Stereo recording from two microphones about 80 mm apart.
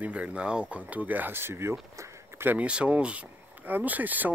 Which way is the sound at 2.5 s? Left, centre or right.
Centre.